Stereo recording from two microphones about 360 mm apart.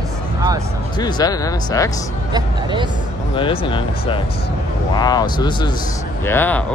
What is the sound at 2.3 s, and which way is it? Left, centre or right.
Speech, centre.